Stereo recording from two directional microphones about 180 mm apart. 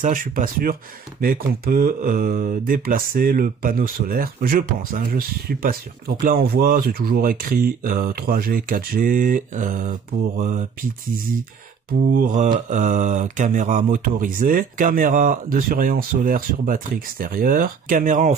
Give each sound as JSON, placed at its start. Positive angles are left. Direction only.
{"t": 0.0, "sound": "speech", "side_deg": -50}